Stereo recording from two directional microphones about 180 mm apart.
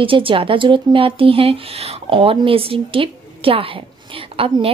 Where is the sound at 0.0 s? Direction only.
30° right (ahead or behind).